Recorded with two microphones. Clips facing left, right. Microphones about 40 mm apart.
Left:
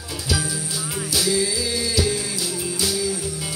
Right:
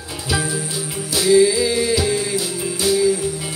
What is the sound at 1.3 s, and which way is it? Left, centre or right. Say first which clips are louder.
Music: right 9 dB; right.